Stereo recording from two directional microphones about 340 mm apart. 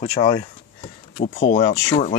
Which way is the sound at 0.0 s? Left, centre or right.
Centre.